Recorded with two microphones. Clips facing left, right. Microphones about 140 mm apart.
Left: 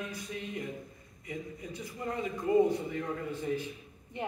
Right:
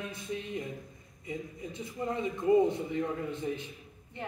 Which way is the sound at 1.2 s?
20° right (ahead or behind).